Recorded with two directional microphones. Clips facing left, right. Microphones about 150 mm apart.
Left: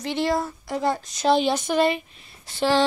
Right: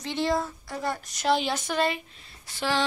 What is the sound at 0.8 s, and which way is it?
Speech, 20° left (ahead or behind).